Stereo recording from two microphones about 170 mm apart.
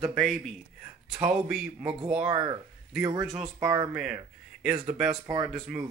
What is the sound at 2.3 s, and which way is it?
Speech, 25° right (ahead or behind).